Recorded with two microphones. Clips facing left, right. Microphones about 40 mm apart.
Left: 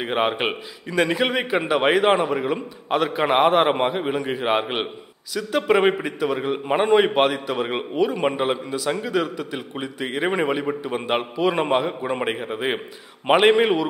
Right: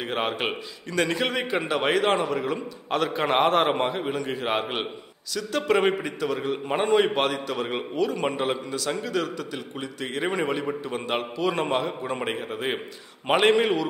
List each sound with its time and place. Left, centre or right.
0.0 s a man's voice: centre